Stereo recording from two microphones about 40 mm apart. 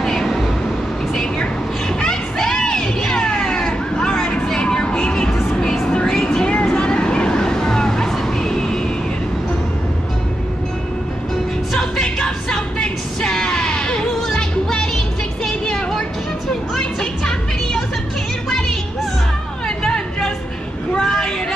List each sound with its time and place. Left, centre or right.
0.0 s cat: centre
2.0 s crowd: centre
5.4 s vehicle: centre
11.7 s music: centre
15.4 s vehicle: centre
16.7 s music: centre
19.8 s chatter: centre
21.0 s vehicle: centre